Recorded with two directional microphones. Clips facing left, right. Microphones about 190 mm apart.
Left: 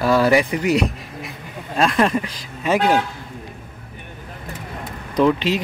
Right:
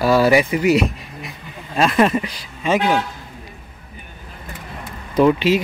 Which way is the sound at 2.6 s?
5° left (ahead or behind).